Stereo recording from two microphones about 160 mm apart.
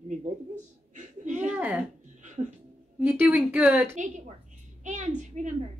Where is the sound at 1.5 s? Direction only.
10° right (ahead or behind).